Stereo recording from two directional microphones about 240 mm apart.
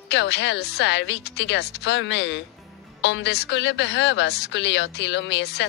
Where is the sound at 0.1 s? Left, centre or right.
Left.